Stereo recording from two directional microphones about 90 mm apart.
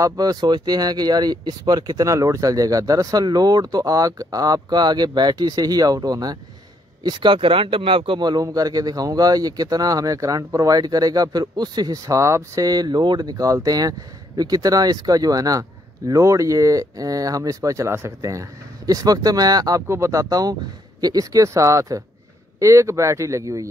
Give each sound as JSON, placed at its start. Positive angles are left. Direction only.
{"t": 0.0, "sound": "speech", "side_deg": -45}
{"t": 7.0, "sound": "speech", "side_deg": -60}
{"t": 8.3, "sound": "speech", "side_deg": -45}
{"t": 19.9, "sound": "speech", "side_deg": -35}